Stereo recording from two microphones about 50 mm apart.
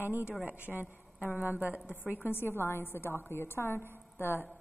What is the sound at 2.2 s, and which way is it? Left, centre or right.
A woman's voice, left.